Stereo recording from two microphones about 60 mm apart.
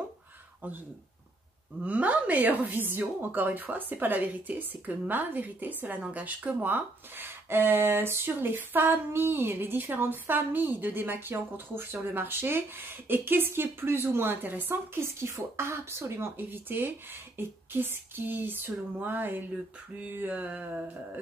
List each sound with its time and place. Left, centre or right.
1.9 s a woman's voice: right
15.0 s speech: right
16.3 s a woman's voice: right
20.2 s a sound: right